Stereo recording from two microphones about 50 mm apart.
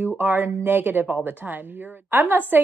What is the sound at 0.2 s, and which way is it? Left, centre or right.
A woman's voice, right.